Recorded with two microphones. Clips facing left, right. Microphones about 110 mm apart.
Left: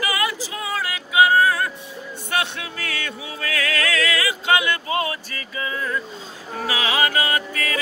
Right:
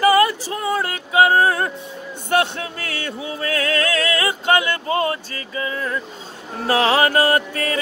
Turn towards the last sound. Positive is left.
turn(degrees=-30)  # may be behind; listen again after turning